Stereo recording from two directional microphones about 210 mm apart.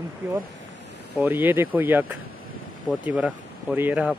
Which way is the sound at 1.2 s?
10° right (ahead or behind).